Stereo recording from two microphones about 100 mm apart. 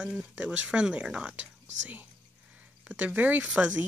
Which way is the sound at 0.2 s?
10° right (ahead or behind).